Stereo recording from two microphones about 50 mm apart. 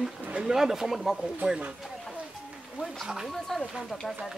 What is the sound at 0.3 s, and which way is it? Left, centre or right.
Speech, centre.